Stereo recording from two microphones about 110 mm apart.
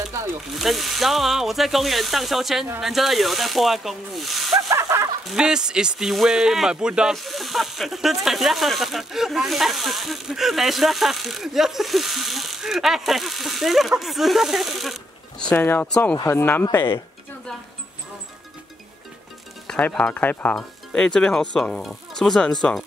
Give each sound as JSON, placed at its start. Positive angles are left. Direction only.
{"t": 0.1, "sound": "ratchet", "side_deg": -30}
{"t": 0.5, "sound": "speech", "side_deg": 0}
{"t": 4.6, "sound": "a sound", "side_deg": -30}
{"t": 5.3, "sound": "speech", "side_deg": -5}
{"t": 15.5, "sound": "speech", "side_deg": 15}
{"t": 16.2, "sound": "speech", "side_deg": 25}
{"t": 19.7, "sound": "speech", "side_deg": 10}